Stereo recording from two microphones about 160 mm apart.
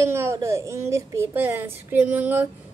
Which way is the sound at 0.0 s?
15° right (ahead or behind).